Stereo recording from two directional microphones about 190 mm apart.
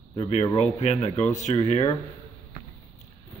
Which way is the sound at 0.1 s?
30° left (ahead or behind).